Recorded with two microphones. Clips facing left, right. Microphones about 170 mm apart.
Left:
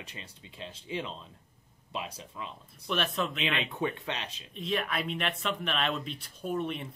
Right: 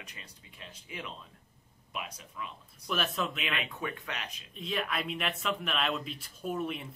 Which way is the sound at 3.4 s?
25° left (ahead or behind).